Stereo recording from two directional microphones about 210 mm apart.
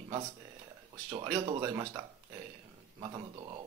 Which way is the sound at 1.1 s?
15° right (ahead or behind).